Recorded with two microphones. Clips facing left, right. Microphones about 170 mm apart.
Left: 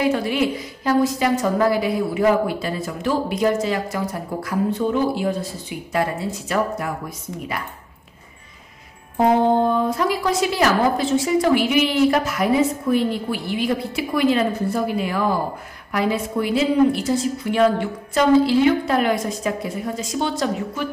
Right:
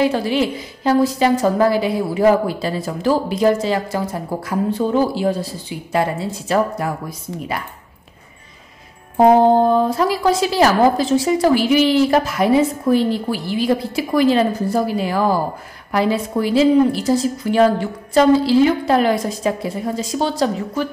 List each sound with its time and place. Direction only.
0.0 s a woman's voice: 30° right (ahead or behind)
9.1 s a woman's voice: 35° right (ahead or behind)